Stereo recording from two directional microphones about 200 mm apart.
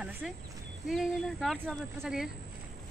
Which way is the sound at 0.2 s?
Centre (ahead or behind).